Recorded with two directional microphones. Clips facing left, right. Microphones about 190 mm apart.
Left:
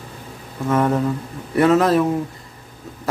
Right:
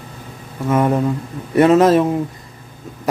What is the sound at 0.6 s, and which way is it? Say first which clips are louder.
A man's voice: right 2 dB; 10° right (ahead or behind).